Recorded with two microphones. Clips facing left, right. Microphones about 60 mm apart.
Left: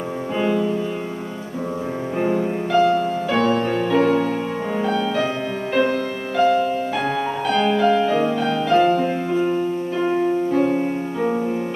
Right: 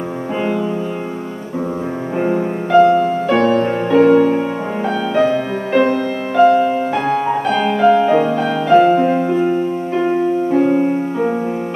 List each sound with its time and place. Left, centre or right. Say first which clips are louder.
0.4 s music: right 1 dB; centre
2.1 s music: right 3 dB; centre
7.5 s music: right 4 dB; centre